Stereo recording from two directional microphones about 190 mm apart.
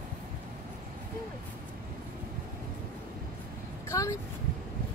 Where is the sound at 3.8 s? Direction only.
15° left (ahead or behind).